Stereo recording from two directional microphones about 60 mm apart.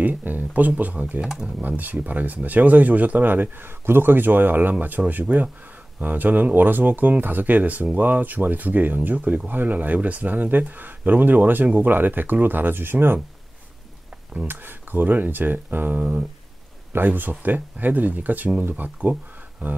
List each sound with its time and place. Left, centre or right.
0.0 s speech: right
1.2 s speech: centre
1.6 s speech: right
14.1 s a sound: centre
14.5 s speech: right
16.9 s speech: right